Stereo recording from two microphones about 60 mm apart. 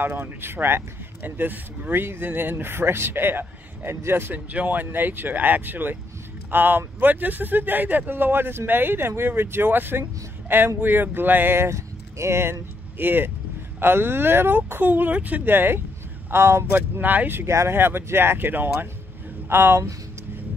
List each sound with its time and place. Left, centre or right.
0.2 s speech: right
4.5 s speech: right
12.9 s speech: right
16.7 s speech: right
17.5 s speech: right
17.7 s speech: right